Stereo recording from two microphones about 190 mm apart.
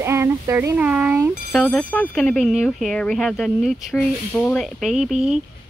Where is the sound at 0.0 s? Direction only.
15° right (ahead or behind).